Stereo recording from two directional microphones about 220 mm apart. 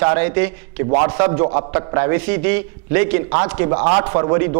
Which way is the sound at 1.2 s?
20° right (ahead or behind).